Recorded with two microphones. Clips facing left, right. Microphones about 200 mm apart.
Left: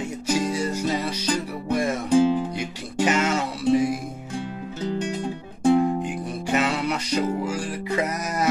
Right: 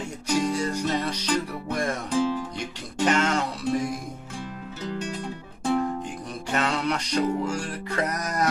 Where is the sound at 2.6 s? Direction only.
5° left (ahead or behind).